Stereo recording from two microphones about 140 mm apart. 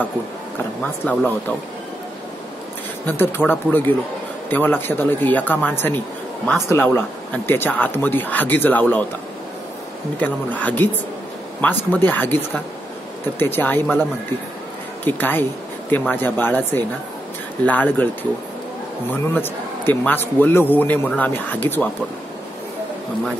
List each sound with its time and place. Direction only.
0.8 s speech: 15° left (ahead or behind)
3.1 s speech: 15° left (ahead or behind)
10.1 s speech: 10° left (ahead or behind)
15.0 s speech: 15° left (ahead or behind)
19.3 s speech: 15° left (ahead or behind)